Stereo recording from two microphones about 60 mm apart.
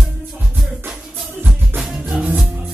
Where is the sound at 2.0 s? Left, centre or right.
Centre.